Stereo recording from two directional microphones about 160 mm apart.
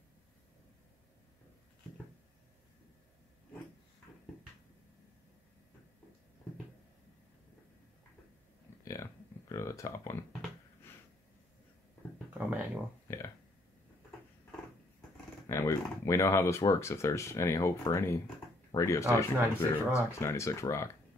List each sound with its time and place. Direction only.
8.8 s a sound: 20° left (ahead or behind)
13.1 s speech: 20° left (ahead or behind)
15.4 s speech: 20° left (ahead or behind)